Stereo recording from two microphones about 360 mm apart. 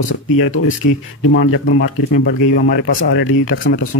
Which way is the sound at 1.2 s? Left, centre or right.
Left.